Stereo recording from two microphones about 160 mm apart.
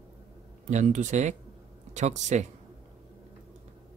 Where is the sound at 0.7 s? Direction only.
50° right (ahead or behind).